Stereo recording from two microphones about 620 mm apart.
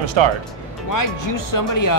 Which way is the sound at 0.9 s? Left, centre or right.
Left.